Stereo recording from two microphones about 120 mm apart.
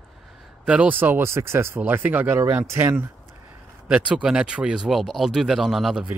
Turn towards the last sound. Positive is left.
turn(degrees=-10)  # may be behind; listen again after turning